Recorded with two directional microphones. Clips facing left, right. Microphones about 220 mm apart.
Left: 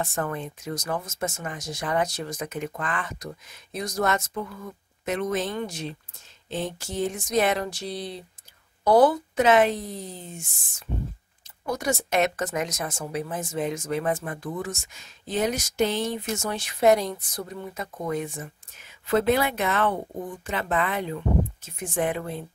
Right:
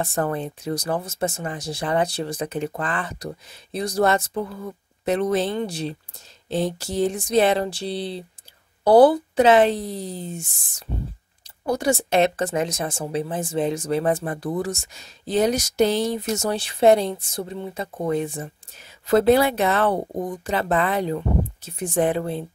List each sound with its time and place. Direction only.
0.0 s speech: 35° right (ahead or behind)